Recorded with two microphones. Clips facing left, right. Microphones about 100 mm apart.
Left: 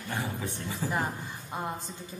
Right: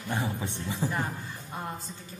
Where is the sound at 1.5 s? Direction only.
20° left (ahead or behind).